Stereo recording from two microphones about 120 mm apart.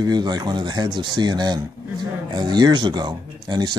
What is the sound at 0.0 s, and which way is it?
Speech, 35° right (ahead or behind).